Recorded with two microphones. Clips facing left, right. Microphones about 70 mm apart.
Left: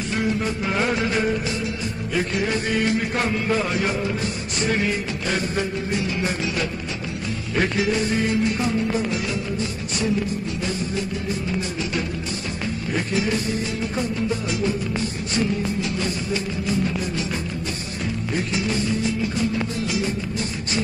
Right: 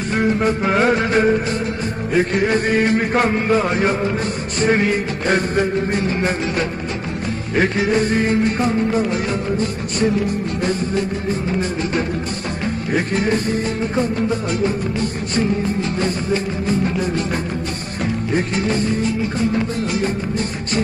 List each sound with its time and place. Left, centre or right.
0.1 s music: right
2.1 s a man's voice: right
4.6 s music: right
7.5 s music: right
12.9 s a man's voice: right
14.6 s music: right
16.6 s a man's voice: right
18.3 s music: right